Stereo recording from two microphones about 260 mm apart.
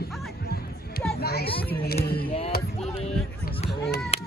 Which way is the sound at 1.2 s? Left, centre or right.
Left.